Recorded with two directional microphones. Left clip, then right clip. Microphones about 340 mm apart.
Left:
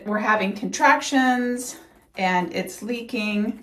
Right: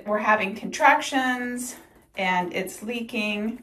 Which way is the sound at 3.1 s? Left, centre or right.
Left.